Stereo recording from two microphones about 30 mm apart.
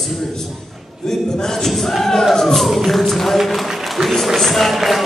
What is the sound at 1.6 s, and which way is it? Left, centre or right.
Music, centre.